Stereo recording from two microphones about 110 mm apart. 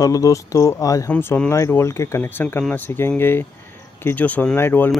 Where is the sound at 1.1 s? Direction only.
10° left (ahead or behind).